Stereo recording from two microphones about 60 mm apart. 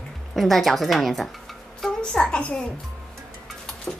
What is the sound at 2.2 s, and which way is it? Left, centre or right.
Speech, centre.